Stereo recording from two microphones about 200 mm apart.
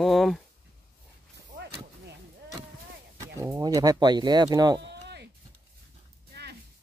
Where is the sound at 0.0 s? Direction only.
Centre (ahead or behind).